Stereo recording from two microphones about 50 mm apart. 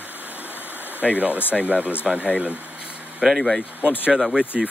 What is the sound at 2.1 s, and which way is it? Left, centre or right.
Speech, centre.